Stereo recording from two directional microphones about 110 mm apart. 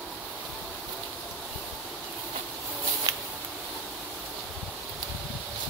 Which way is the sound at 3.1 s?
35° right (ahead or behind).